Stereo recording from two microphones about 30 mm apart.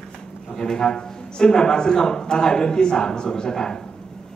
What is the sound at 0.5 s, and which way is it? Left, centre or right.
A man's voice, left.